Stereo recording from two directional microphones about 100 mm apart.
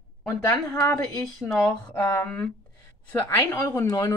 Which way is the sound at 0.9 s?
5° left (ahead or behind).